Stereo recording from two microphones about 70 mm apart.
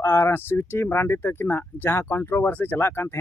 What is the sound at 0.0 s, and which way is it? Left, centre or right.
Speech, left.